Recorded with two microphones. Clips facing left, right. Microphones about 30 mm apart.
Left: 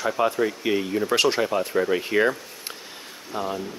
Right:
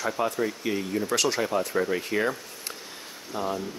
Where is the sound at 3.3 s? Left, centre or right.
Centre.